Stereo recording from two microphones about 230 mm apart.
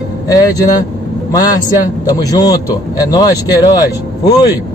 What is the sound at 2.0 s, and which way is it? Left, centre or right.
A man's voice, centre.